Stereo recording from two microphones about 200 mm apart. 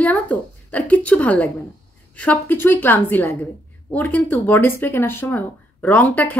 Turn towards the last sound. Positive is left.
turn(degrees=10)  # may be behind; listen again after turning